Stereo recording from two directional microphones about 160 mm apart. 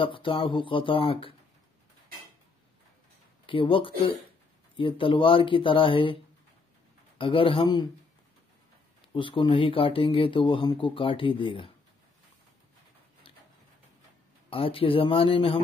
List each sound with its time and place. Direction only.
0.0 s speech: 30° left (ahead or behind)
3.4 s speech: 30° left (ahead or behind)
7.2 s speech: 35° left (ahead or behind)
9.1 s speech: 30° left (ahead or behind)
14.5 s speech: 35° left (ahead or behind)